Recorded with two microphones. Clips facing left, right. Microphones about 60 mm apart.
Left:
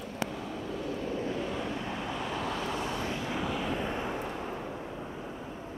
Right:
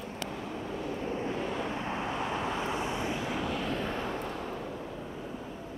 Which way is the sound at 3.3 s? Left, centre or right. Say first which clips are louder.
Even; centre.